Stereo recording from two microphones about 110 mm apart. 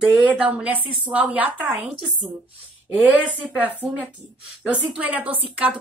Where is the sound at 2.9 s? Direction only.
15° right (ahead or behind).